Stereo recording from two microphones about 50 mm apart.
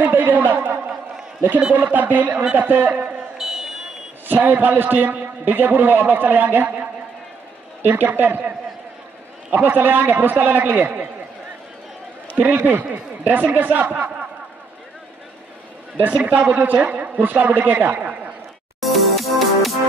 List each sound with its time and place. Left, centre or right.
0.0 s a man's voice: right
3.3 s a sound: centre
4.3 s a man's voice: right
12.4 s a man's voice: right
16.1 s a man's voice: right
18.8 s music: centre